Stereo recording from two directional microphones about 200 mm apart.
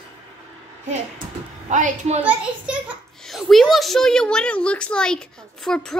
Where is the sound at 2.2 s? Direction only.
5° right (ahead or behind).